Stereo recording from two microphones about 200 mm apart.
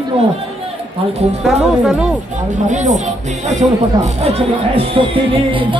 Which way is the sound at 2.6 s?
35° right (ahead or behind).